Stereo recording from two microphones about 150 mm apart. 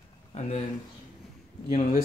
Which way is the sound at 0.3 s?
50° left (ahead or behind).